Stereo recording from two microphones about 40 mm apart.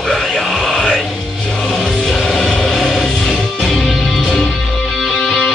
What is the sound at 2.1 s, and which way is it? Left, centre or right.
Music, centre.